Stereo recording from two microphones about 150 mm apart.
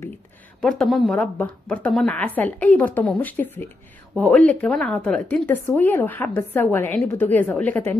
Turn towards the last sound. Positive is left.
turn(degrees=10)  # may be behind; listen again after turning